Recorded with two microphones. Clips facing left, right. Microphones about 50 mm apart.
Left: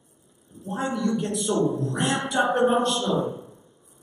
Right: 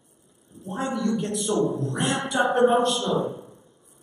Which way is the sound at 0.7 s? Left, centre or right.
Centre.